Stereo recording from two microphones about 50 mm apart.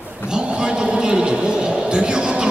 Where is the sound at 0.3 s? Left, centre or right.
Centre.